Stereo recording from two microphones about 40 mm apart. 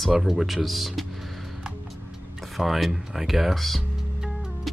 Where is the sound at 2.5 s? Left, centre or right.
Centre.